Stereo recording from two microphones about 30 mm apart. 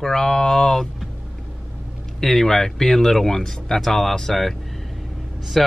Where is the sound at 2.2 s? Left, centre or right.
Centre.